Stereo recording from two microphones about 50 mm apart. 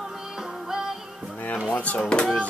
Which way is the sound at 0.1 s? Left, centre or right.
Centre.